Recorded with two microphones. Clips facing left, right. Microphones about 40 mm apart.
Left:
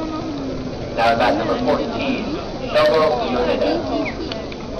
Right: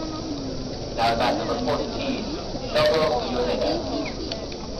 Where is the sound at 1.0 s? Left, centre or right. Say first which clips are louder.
Left 6 dB; left.